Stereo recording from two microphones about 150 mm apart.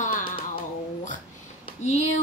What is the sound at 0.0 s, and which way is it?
Music, 65° left (ahead or behind).